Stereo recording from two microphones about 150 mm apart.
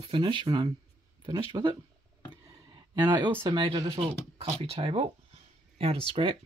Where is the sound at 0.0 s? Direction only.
30° right (ahead or behind).